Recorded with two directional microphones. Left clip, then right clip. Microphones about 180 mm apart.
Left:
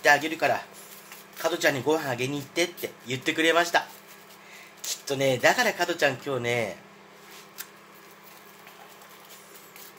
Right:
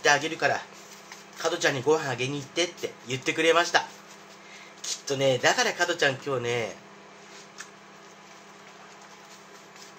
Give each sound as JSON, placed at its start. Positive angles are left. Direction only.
{"t": 0.0, "sound": "speech", "side_deg": 10}
{"t": 4.8, "sound": "speech", "side_deg": 10}